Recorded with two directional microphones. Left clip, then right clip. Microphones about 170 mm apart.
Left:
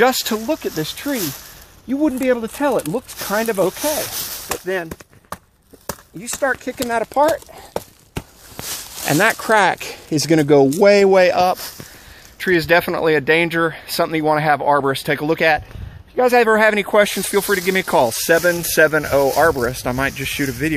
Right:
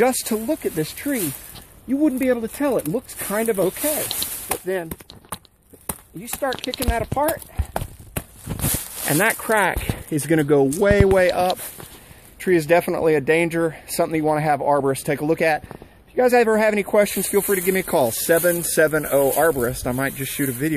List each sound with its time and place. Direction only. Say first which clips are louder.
0.0 s speech: left 4 dB; 5° left (ahead or behind)
6.9 s speech: left 6 dB; 40° left (ahead or behind)
9.0 s speech: left 4 dB; 25° left (ahead or behind)
11.3 s speech: left 5 dB; 10° left (ahead or behind)